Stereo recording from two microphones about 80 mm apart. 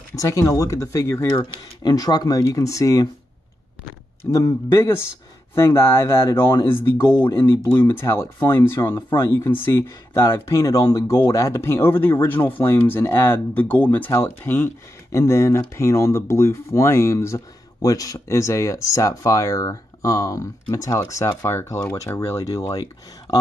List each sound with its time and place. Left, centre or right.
0.1 s speech: left
1.3 s speech: left
4.3 s speech: left
17.8 s speech: left